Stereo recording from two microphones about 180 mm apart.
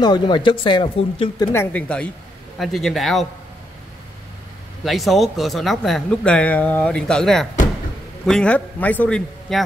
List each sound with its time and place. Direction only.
0.0 s speech: 25° left (ahead or behind)
1.5 s a man's voice: 10° left (ahead or behind)
4.8 s a man's voice: centre (ahead or behind)